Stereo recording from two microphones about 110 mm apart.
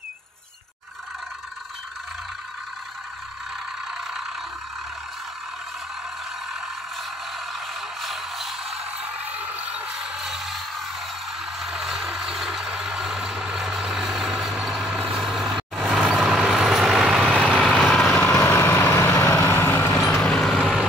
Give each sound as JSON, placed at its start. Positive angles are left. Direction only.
{"t": 8.0, "sound": "music", "side_deg": 0}
{"t": 9.0, "sound": "a sound", "side_deg": -15}
{"t": 11.6, "sound": "vehicle", "side_deg": -5}
{"t": 18.0, "sound": "vehicle", "side_deg": 20}
{"t": 20.0, "sound": "vehicle", "side_deg": 5}